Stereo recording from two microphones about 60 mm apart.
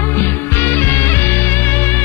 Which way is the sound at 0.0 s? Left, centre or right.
Left.